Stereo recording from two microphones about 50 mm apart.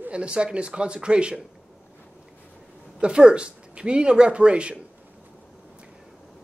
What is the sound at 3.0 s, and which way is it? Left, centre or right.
A man's voice, centre.